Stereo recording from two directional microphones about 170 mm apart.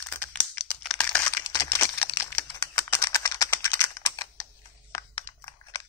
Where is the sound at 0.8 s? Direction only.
10° left (ahead or behind).